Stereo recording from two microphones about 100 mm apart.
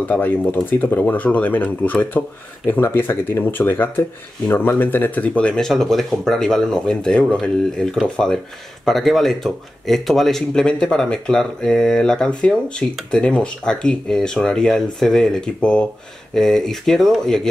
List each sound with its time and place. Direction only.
0.1 s speech: 20° left (ahead or behind); by 17.4 s 5° left (ahead or behind)